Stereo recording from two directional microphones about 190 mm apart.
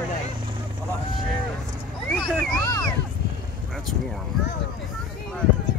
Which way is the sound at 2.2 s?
20° left (ahead or behind).